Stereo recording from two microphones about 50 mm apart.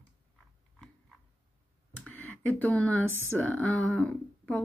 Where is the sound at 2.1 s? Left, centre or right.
Left.